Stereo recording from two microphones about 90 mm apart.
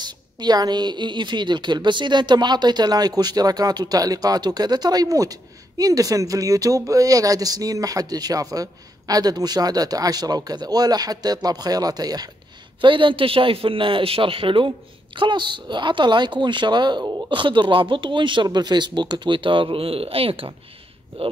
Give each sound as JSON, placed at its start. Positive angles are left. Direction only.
{"t": 0.0, "sound": "a woman's voice", "side_deg": -50}
{"t": 12.8, "sound": "speech", "side_deg": -70}
{"t": 15.1, "sound": "speech", "side_deg": -60}